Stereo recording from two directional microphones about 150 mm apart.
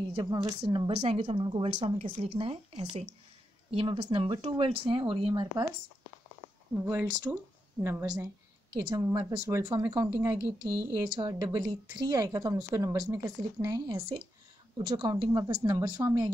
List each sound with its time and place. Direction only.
0.1 s a woman's voice: 30° right (ahead or behind)
1.0 s speech: 40° right (ahead or behind)
6.7 s a woman's voice: 15° right (ahead or behind)